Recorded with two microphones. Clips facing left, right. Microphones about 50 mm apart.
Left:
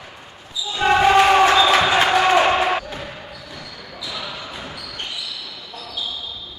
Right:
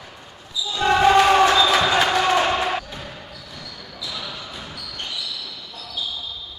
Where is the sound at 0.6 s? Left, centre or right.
Left.